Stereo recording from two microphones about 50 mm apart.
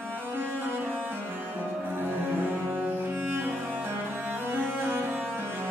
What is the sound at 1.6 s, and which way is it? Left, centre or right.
Cello, right.